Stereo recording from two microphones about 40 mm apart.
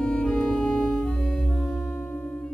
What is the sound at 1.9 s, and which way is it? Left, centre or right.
Music, left.